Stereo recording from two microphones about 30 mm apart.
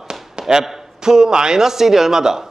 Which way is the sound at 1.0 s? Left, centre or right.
Right.